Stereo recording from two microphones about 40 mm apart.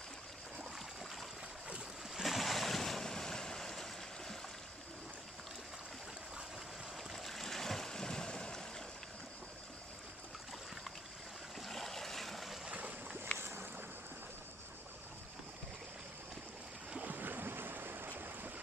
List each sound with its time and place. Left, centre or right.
2.2 s waves: centre
7.0 s stream: centre
11.6 s a sound: centre
13.3 s boat: left
17.0 s waves: right